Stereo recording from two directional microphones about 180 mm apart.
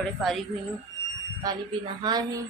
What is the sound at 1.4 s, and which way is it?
A woman's voice, 20° right (ahead or behind).